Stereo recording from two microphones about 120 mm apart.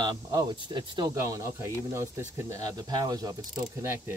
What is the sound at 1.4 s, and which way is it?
Speech, 25° right (ahead or behind).